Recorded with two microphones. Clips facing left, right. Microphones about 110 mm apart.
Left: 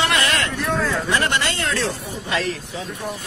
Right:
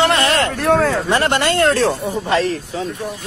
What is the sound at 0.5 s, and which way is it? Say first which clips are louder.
Speech: right 7 dB; 60° right (ahead or behind).